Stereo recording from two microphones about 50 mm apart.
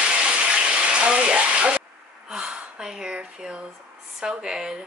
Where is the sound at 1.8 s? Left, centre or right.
Centre.